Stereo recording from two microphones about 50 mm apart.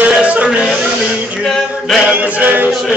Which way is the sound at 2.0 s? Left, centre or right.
Right.